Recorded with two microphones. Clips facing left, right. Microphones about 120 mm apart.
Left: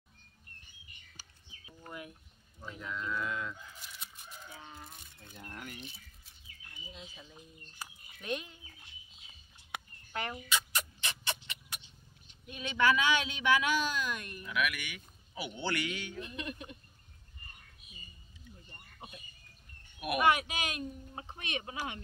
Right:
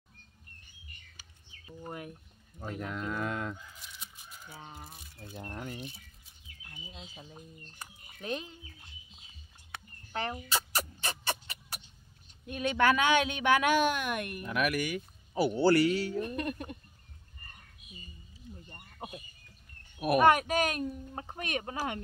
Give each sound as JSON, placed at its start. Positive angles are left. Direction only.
{"t": 1.9, "sound": "a woman's voice", "side_deg": -40}
{"t": 2.6, "sound": "a woman's voice", "side_deg": -55}
{"t": 3.8, "sound": "chicken", "side_deg": 0}
{"t": 4.5, "sound": "speech", "side_deg": -35}
{"t": 4.9, "sound": "wild animals", "side_deg": -5}
{"t": 5.5, "sound": "speech", "side_deg": -30}
{"t": 10.1, "sound": "chicken", "side_deg": -35}
{"t": 12.4, "sound": "a woman's voice", "side_deg": -50}
{"t": 18.4, "sound": "a sound", "side_deg": -35}
{"t": 20.0, "sound": "a woman's voice", "side_deg": -40}